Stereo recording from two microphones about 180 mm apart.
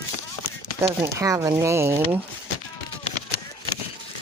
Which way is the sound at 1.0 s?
15° right (ahead or behind).